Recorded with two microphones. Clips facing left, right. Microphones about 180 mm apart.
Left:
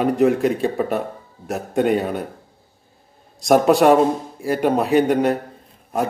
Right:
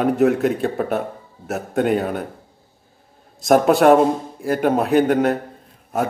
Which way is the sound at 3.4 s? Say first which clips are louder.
Even; centre (ahead or behind).